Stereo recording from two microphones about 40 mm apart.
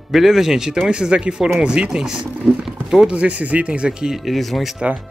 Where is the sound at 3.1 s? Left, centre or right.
Right.